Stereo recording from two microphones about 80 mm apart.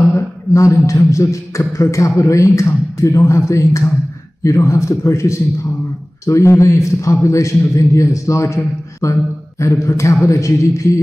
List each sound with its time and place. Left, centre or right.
0.1 s speech: left